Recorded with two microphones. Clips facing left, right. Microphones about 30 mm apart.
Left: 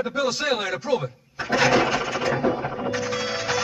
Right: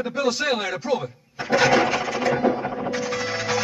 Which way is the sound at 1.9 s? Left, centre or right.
Centre.